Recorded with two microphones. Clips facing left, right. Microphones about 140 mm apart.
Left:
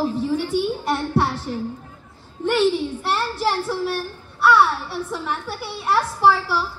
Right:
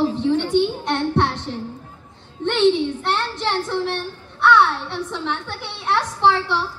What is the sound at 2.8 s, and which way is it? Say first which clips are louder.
A woman's voice: right 2 dB; 10° left (ahead or behind).